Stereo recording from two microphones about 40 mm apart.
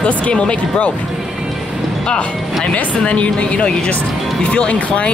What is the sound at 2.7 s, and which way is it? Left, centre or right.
Speech, left.